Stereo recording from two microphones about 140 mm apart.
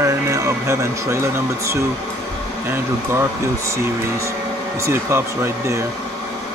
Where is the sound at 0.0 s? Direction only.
20° right (ahead or behind).